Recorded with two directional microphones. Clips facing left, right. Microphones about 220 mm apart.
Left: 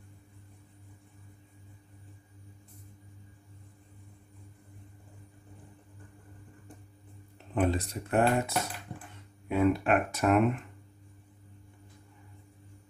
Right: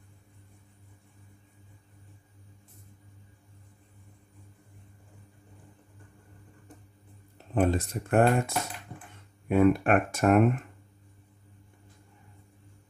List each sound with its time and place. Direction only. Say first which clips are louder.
7.5 s speech: right 3 dB; 50° right (ahead or behind)